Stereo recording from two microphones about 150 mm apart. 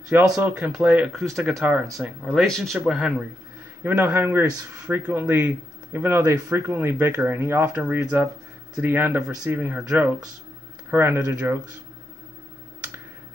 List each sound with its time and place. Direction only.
0.4 s speech: 10° right (ahead or behind)
3.8 s speech: 15° right (ahead or behind)